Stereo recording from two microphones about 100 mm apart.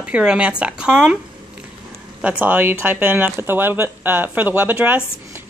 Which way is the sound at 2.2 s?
15° right (ahead or behind).